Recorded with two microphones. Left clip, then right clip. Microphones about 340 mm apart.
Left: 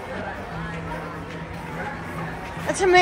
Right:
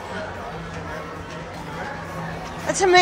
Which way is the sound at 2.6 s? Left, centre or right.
Centre.